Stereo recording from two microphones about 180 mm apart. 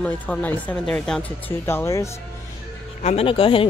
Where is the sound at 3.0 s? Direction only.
30° left (ahead or behind).